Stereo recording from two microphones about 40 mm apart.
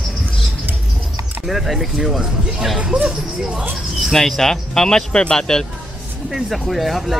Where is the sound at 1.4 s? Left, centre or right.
Centre.